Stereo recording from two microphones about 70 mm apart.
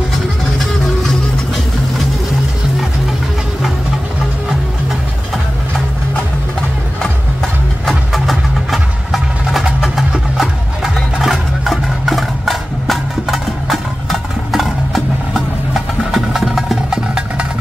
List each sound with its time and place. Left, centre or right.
7.9 s music: centre